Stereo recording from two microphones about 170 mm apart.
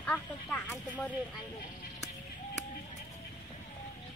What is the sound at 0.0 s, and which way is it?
Speech, 10° left (ahead or behind).